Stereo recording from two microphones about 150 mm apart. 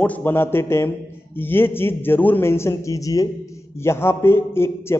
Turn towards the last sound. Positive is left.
turn(degrees=15)  # may be behind; listen again after turning